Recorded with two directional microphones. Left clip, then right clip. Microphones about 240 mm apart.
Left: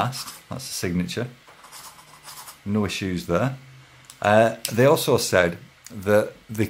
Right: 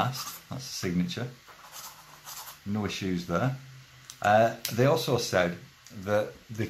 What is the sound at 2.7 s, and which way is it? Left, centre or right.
Speech, left.